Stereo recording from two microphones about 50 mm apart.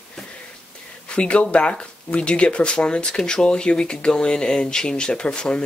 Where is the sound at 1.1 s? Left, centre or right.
Left.